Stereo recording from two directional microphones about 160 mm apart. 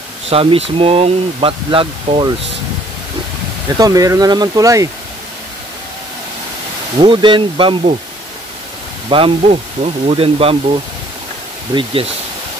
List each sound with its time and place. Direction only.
0.3 s speech: 35° right (ahead or behind)
3.7 s speech: 20° right (ahead or behind)
7.0 s speech: 30° right (ahead or behind)
9.1 s speech: 35° right (ahead or behind)
11.7 s speech: 35° right (ahead or behind)